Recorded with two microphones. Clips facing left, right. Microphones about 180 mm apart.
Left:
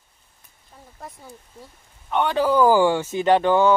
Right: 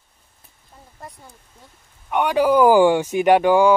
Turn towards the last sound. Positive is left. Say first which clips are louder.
# right 3 dB
turn(degrees=-10)  # may be behind; listen again after turning